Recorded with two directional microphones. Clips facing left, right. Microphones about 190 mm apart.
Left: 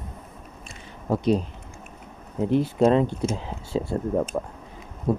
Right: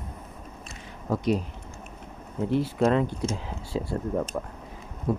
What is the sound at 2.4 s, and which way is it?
Speech, 20° left (ahead or behind).